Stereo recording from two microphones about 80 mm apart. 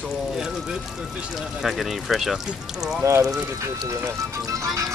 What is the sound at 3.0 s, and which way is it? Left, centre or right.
Speech, right.